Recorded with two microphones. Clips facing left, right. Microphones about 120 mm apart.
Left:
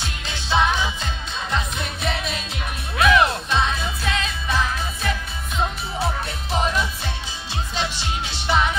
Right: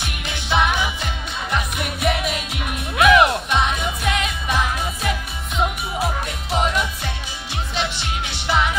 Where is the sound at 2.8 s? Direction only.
20° right (ahead or behind).